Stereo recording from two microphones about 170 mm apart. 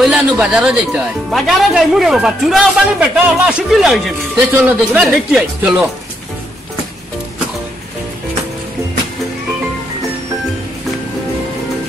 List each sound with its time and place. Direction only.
0.0 s speech: 5° right (ahead or behind)